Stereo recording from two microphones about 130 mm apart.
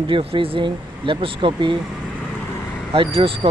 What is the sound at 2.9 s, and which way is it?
Speech, 45° right (ahead or behind).